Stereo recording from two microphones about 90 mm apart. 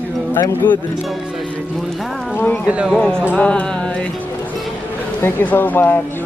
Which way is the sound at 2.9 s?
5° left (ahead or behind).